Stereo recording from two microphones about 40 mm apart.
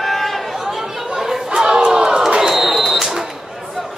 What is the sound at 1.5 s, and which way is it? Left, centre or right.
Battle cry, centre.